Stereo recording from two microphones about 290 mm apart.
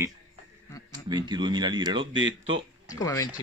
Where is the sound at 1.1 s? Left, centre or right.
Centre.